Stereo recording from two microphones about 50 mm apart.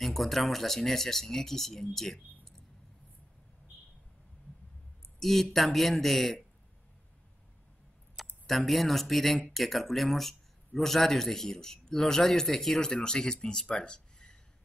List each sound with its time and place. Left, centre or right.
0.0 s speech: centre
5.2 s speech: centre
8.5 s speech: centre